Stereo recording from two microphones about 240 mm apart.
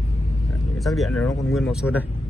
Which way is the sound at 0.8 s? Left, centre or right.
Centre.